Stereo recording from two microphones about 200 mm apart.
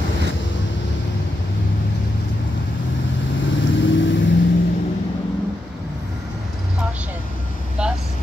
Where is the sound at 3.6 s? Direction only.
70° left (ahead or behind).